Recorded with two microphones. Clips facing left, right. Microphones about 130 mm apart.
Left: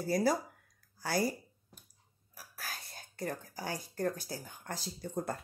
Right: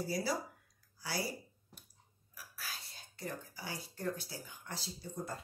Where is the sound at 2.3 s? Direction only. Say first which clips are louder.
Left 3 dB; 50° left (ahead or behind).